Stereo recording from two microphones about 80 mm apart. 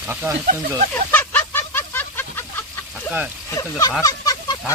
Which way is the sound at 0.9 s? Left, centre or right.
Left.